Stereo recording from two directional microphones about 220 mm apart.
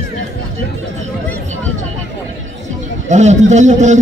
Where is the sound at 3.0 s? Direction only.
30° right (ahead or behind).